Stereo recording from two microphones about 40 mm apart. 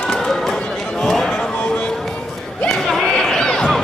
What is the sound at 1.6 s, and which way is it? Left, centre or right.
Music, left.